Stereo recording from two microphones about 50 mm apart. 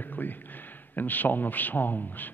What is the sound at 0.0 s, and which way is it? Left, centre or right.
A man's voice, left.